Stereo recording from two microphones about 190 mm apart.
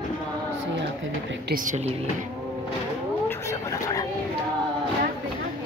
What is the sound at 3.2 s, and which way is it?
Vehicle, 15° left (ahead or behind).